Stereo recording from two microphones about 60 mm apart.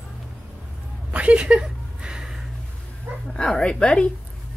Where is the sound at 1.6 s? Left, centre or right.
Centre.